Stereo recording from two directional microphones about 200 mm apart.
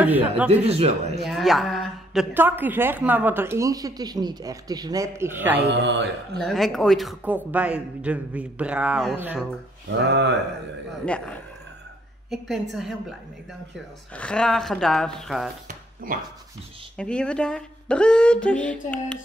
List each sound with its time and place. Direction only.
0.0 s a woman's voice: 5° right (ahead or behind)
0.7 s a man's voice: 30° right (ahead or behind)
1.2 s a woman's voice: centre (ahead or behind)
5.7 s a man's voice: 60° right (ahead or behind)
6.4 s a man's voice: centre (ahead or behind)
9.9 s a man's voice: 60° right (ahead or behind)
11.1 s speech: 5° left (ahead or behind)
14.1 s a man's voice: 5° left (ahead or behind)
16.0 s speech: 45° right (ahead or behind)
16.9 s a man's voice: 5° left (ahead or behind)